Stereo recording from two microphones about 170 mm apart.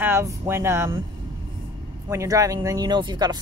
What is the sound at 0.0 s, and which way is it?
Speech, 15° right (ahead or behind).